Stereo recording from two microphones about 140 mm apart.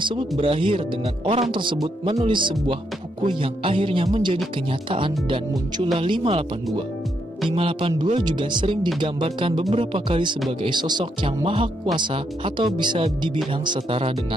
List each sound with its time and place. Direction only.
0.0 s speech: 40° right (ahead or behind)
7.4 s speech: 40° right (ahead or behind)